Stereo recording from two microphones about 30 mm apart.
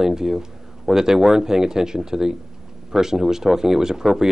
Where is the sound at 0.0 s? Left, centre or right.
Centre.